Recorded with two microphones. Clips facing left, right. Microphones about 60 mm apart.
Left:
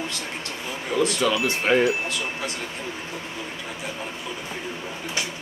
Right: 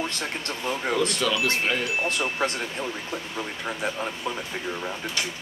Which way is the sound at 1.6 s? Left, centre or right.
Left.